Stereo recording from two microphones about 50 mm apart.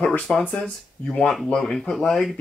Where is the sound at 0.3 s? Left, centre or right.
Centre.